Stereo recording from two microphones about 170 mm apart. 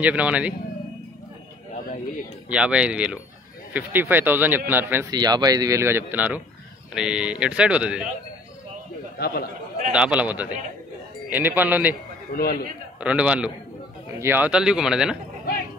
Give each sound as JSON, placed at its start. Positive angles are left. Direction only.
{"t": 0.0, "sound": "a man's voice", "side_deg": -10}
{"t": 2.5, "sound": "a man's voice", "side_deg": -5}
{"t": 5.1, "sound": "a man's voice", "side_deg": -25}
{"t": 9.2, "sound": "speech", "side_deg": 65}
{"t": 9.9, "sound": "a man's voice", "side_deg": -5}
{"t": 12.4, "sound": "speech", "side_deg": 60}
{"t": 13.0, "sound": "a man's voice", "side_deg": -5}